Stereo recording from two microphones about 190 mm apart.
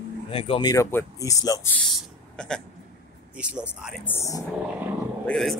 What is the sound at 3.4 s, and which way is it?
Speech, 5° right (ahead or behind).